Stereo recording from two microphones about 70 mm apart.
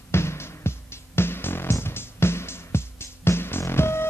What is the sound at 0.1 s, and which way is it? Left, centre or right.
Music, left.